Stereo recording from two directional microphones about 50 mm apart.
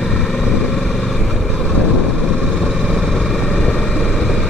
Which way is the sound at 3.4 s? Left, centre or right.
Centre.